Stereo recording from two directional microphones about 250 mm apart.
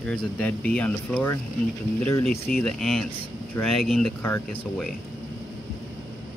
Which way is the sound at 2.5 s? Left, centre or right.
Centre.